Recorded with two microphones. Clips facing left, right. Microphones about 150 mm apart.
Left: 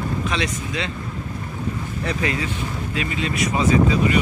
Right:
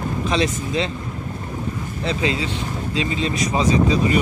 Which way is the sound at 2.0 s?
25° right (ahead or behind).